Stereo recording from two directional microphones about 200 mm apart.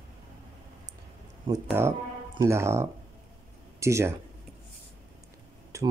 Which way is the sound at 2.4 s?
15° right (ahead or behind).